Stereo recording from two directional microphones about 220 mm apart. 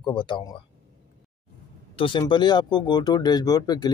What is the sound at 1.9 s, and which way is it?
Speech, 20° left (ahead or behind).